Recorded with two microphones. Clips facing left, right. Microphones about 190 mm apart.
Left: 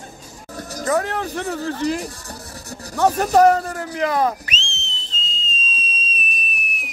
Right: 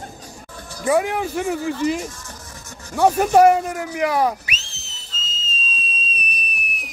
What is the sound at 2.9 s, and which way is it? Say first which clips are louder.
A man's voice: right 1 dB; 10° right (ahead or behind).